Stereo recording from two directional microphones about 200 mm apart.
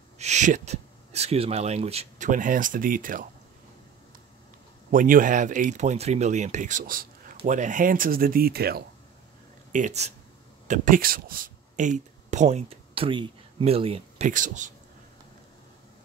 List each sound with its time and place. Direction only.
0.2 s speech: 35° right (ahead or behind)
4.9 s speech: 45° right (ahead or behind)
9.7 s speech: 40° right (ahead or behind)